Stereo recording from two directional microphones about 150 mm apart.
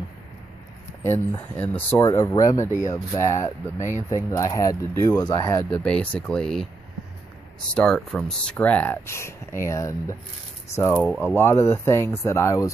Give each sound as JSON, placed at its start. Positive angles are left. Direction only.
{"t": 1.0, "sound": "speech", "side_deg": 15}
{"t": 2.0, "sound": "speech", "side_deg": 20}
{"t": 5.7, "sound": "speech", "side_deg": 5}
{"t": 7.7, "sound": "speech", "side_deg": 5}